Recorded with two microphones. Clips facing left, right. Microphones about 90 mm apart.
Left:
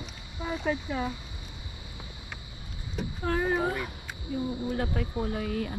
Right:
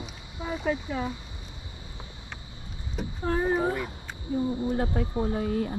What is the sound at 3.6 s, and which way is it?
Speech, 25° right (ahead or behind).